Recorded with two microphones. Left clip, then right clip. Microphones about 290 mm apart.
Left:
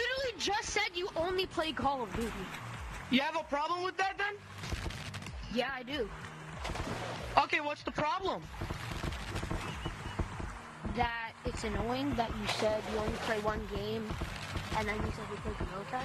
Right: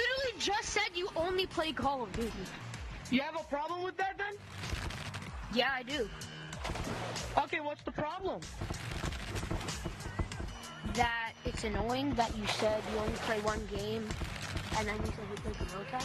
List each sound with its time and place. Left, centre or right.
0.0 s a sound: centre
3.1 s a woman's voice: centre
5.5 s speech: centre
6.6 s music: centre
7.3 s a woman's voice: left
11.0 s speech: centre
14.5 s a sound: centre